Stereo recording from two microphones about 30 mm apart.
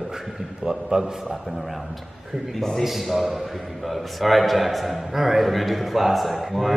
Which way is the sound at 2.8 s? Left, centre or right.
Centre.